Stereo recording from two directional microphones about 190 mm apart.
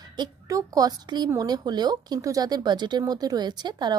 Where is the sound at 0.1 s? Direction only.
20° right (ahead or behind).